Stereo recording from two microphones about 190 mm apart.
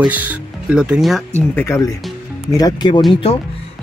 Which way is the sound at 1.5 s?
15° left (ahead or behind).